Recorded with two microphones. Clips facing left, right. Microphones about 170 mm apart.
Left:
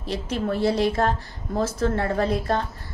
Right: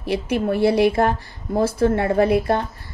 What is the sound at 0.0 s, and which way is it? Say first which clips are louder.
A woman's voice: right 5 dB; 10° right (ahead or behind).